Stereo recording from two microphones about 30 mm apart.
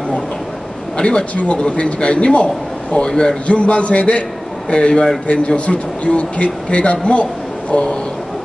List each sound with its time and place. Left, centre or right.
0.9 s speech: left
1.3 s speech: left
1.6 s a man's voice: left
3.4 s a man's voice: left